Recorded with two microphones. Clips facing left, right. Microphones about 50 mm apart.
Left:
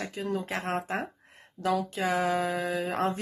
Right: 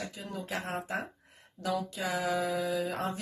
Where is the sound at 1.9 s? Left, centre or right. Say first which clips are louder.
Left 4 dB; left.